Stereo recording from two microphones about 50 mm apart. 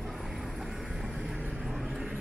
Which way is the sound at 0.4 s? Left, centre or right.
Centre.